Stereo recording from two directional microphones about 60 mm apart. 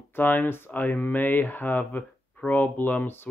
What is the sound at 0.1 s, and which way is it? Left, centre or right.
Speech, left.